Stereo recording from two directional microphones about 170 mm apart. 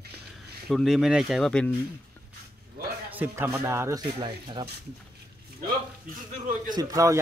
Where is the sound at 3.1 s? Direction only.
10° right (ahead or behind).